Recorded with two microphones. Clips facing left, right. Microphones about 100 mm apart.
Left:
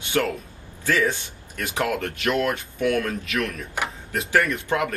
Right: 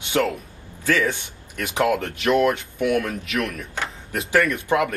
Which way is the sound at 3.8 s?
15° left (ahead or behind).